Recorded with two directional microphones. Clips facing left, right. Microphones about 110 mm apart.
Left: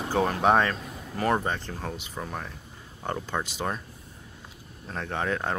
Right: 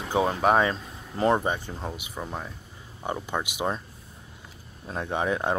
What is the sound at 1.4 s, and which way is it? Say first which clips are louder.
Speech: right 2 dB; 10° right (ahead or behind).